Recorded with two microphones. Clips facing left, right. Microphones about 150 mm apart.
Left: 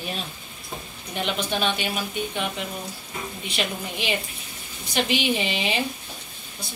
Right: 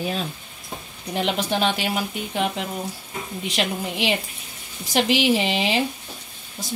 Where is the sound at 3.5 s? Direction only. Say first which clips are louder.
Right 4 dB; 90° right.